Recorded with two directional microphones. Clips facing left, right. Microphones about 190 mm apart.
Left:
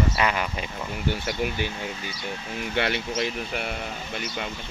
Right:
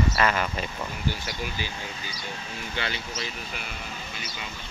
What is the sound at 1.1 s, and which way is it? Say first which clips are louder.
Speech: left 6 dB; 60° left (ahead or behind).